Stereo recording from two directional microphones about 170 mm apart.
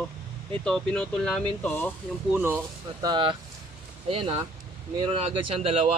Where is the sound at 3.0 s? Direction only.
25° right (ahead or behind).